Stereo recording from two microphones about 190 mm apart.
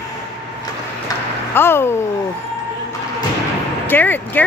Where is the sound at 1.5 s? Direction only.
10° left (ahead or behind).